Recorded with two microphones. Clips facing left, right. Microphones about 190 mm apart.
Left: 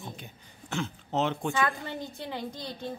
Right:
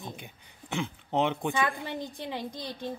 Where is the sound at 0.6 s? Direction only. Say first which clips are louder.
Right 1 dB; 15° right (ahead or behind).